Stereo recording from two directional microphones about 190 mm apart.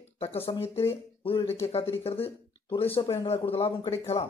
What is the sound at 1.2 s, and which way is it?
Speech, 30° left (ahead or behind).